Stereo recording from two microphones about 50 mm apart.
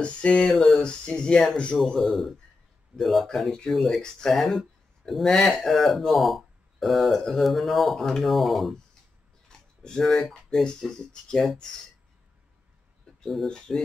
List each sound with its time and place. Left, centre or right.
0.0 s speech: left
1.9 s speech: centre
9.5 s speech: centre
13.2 s speech: centre